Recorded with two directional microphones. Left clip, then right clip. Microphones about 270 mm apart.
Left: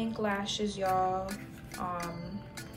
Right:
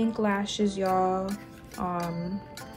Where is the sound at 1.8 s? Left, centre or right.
Right.